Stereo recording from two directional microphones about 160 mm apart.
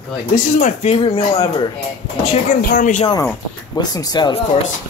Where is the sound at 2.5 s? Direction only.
65° left (ahead or behind).